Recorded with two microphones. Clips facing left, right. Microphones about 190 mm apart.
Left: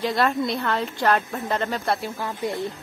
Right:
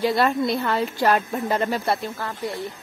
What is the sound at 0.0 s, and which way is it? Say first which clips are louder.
A woman's voice: right 2 dB; 5° right (ahead or behind).